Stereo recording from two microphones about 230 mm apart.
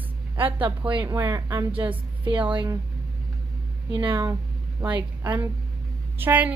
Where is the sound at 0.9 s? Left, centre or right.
Right.